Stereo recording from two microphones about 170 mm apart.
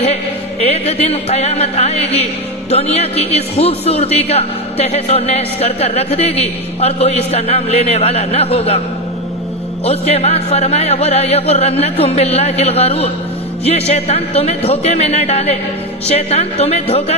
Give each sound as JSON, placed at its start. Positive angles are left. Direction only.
{"t": 0.0, "sound": "a man's voice", "side_deg": 40}
{"t": 9.8, "sound": "a man's voice", "side_deg": 35}